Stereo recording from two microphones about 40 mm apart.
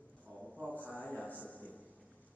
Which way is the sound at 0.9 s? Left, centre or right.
Left.